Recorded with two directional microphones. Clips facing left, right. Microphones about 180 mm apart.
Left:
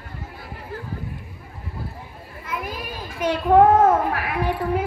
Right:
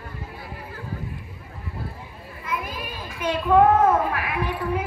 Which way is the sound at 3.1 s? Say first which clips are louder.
Left 3 dB; 40° left (ahead or behind).